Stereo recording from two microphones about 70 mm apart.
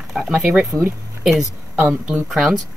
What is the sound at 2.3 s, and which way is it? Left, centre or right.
Speech, centre.